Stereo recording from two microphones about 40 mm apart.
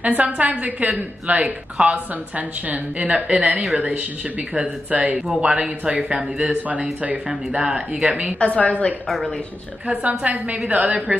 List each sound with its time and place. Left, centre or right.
0.0 s speech: right
5.1 s speech: right
8.4 s a woman's voice: left
10.0 s speech: right